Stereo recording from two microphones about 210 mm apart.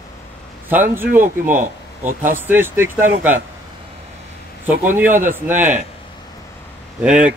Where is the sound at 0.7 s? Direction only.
10° right (ahead or behind).